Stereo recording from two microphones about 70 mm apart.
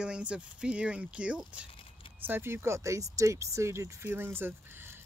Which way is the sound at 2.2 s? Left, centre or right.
Right.